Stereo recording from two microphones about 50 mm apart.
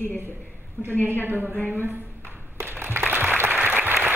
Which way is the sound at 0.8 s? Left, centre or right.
Right.